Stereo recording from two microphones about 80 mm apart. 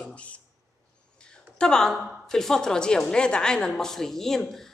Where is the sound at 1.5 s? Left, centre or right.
Centre.